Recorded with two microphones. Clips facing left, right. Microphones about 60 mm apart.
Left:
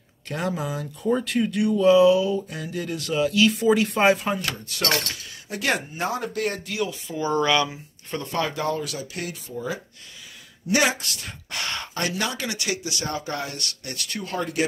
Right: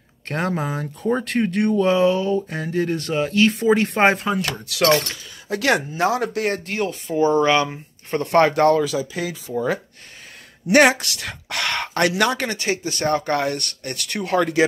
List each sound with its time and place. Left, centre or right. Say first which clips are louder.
0.3 s speech: right 4 dB; right
7.2 s speech: right 5 dB; right
7.7 s speech: right 7 dB; right
12.4 s speech: right 5 dB; right